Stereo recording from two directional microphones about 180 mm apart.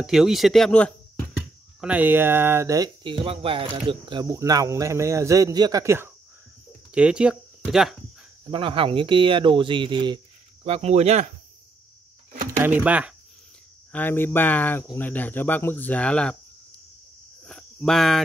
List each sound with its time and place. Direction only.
0.0 s speech: centre (ahead or behind)
1.8 s speech: 10° right (ahead or behind)
8.5 s speech: 30° right (ahead or behind)
12.4 s speech: 10° right (ahead or behind)
13.9 s speech: 10° left (ahead or behind)
17.5 s cricket: 5° left (ahead or behind)